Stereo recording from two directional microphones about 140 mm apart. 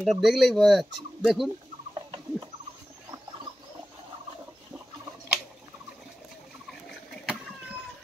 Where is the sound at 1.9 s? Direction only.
30° right (ahead or behind).